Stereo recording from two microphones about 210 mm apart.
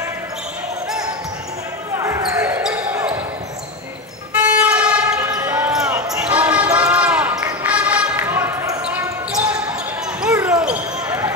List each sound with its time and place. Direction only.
2.0 s basketball bounce: 15° right (ahead or behind)
4.4 s basketball bounce: 5° right (ahead or behind)